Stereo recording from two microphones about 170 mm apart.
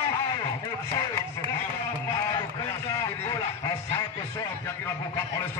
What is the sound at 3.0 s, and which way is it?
Speech, 20° left (ahead or behind).